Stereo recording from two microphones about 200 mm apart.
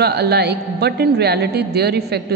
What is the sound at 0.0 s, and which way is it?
A woman's voice, 55° right (ahead or behind).